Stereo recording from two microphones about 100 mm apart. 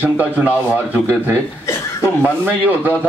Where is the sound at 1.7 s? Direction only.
30° left (ahead or behind).